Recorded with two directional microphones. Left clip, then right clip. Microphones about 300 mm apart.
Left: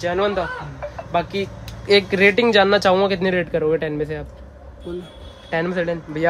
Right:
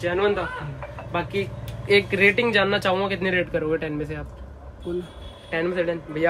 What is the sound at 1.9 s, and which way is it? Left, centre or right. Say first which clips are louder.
Speech: left 3 dB; left.